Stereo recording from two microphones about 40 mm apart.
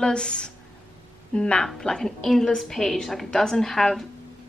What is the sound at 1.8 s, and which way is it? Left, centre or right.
A woman's voice, centre.